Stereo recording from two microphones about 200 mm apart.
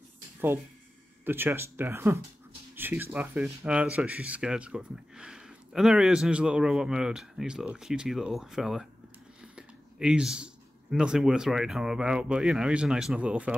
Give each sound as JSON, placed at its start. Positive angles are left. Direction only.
{"t": 1.2, "sound": "speech", "side_deg": -10}